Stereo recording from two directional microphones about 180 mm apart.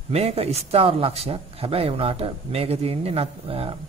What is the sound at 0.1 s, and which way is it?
A man's voice, 35° right (ahead or behind).